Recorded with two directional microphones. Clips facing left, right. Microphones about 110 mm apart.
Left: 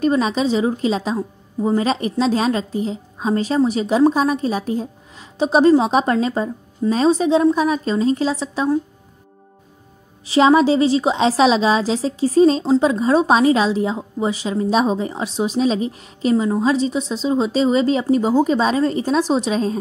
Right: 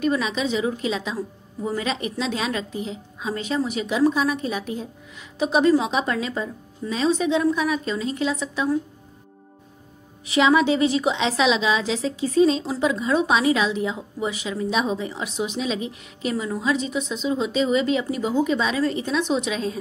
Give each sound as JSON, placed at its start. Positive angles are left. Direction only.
{"t": 0.0, "sound": "a woman's voice", "side_deg": 35}
{"t": 10.2, "sound": "a woman's voice", "side_deg": 35}